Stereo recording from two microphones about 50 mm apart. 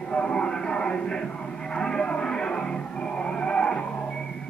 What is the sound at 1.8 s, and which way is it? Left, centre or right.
Music, centre.